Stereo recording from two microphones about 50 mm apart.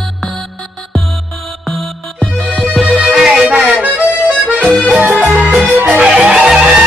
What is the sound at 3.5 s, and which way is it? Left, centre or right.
Music, right.